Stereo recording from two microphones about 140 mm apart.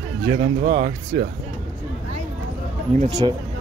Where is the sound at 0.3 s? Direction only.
50° right (ahead or behind).